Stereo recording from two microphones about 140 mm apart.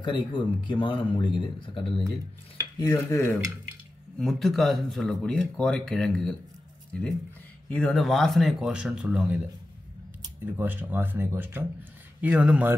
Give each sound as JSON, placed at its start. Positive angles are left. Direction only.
{"t": 0.0, "sound": "speech", "side_deg": 35}
{"t": 2.9, "sound": "cutlery", "side_deg": 15}
{"t": 4.2, "sound": "speech", "side_deg": 0}
{"t": 10.4, "sound": "speech", "side_deg": -15}